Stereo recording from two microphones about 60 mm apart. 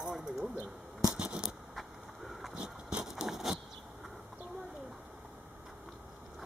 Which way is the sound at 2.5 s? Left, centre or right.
Centre.